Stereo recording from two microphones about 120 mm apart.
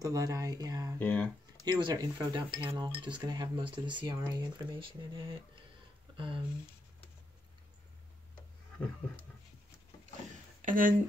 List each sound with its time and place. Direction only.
0.0 s speech: 30° right (ahead or behind)
0.9 s speech: 10° left (ahead or behind)
1.6 s speech: 40° right (ahead or behind)
10.6 s speech: 90° right